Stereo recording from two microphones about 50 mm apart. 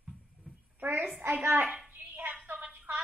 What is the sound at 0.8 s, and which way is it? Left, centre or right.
Speech, right.